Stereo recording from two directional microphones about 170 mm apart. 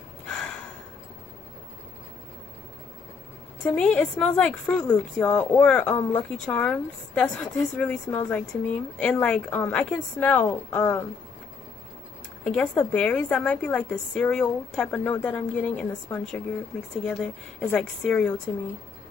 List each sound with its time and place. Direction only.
3.6 s speech: 5° left (ahead or behind)
12.4 s a woman's voice: 5° left (ahead or behind)